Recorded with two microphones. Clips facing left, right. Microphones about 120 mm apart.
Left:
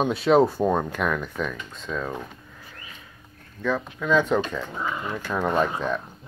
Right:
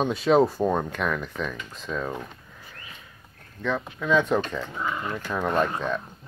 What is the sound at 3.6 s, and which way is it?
Speech, centre (ahead or behind).